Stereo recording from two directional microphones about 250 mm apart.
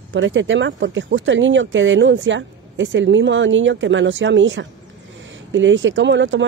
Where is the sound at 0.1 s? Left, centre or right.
Right.